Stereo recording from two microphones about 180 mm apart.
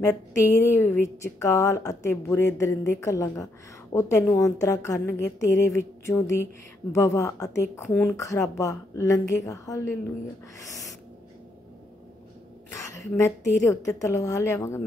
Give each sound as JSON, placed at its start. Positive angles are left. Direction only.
{"t": 0.0, "sound": "a woman's voice", "side_deg": 15}
{"t": 13.2, "sound": "a woman's voice", "side_deg": 15}